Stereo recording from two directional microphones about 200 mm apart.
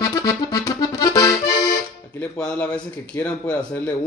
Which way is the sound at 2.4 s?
5° left (ahead or behind).